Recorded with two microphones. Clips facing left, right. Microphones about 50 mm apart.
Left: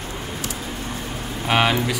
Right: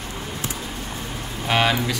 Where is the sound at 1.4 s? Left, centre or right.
Centre.